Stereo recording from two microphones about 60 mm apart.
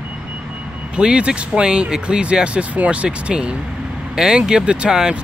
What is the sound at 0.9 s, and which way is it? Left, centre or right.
Speech, centre.